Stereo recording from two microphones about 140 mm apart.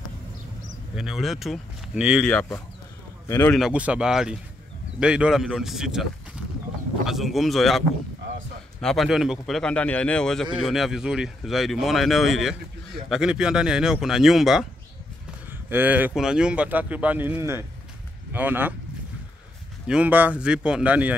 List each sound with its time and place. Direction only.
0.9 s speech: 5° right (ahead or behind)
2.2 s speech: 10° left (ahead or behind)
3.3 s a man's voice: 20° left (ahead or behind)
3.5 s speech: 5° right (ahead or behind)
7.1 s speech: centre (ahead or behind)
8.8 s speech: centre (ahead or behind)
15.5 s speech: 15° right (ahead or behind)
19.9 s speech: 10° right (ahead or behind)